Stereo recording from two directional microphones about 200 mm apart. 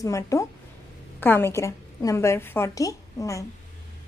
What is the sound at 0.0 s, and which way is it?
A woman's voice, 15° left (ahead or behind).